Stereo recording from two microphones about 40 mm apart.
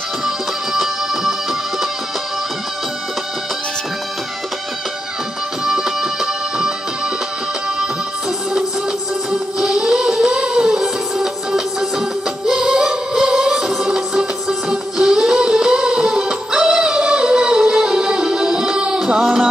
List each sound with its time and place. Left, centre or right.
5.7 s music: centre
9.3 s music: centre